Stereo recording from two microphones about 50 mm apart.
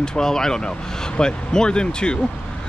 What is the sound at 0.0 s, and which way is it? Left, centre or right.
Speech, centre.